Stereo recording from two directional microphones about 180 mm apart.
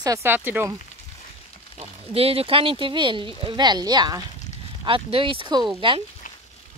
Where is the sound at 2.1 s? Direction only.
30° right (ahead or behind).